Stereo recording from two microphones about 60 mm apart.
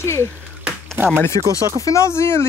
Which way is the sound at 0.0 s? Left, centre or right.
Left.